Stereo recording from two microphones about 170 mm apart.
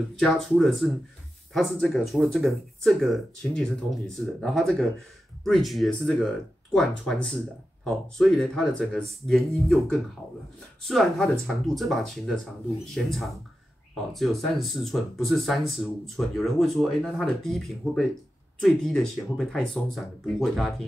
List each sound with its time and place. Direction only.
0.2 s speech: 5° left (ahead or behind)